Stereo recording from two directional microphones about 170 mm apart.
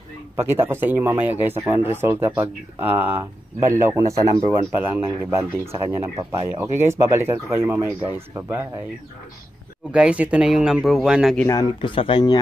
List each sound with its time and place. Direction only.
0.4 s speech: 15° right (ahead or behind)
9.9 s speech: 5° right (ahead or behind)
11.4 s speech: 25° left (ahead or behind)